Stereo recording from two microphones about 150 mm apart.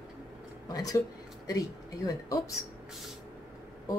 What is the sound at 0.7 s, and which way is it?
Speech, 25° left (ahead or behind).